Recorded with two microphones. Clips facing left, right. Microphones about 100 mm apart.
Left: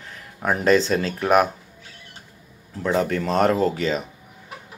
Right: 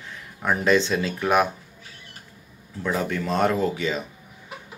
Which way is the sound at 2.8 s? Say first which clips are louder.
Left 4 dB; 35° left (ahead or behind).